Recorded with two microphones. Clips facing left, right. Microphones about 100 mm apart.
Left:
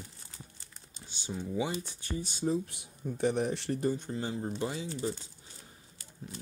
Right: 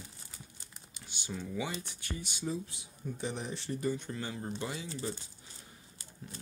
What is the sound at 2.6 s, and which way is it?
Speech, 55° left (ahead or behind).